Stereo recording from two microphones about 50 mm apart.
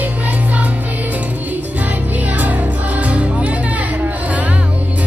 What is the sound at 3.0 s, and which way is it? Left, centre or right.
Music, right.